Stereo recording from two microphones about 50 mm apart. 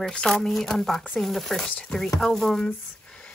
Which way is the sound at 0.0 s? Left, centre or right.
Centre.